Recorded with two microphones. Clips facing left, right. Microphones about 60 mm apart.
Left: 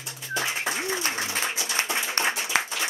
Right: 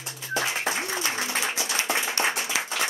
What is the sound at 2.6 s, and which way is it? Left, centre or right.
Applause, left.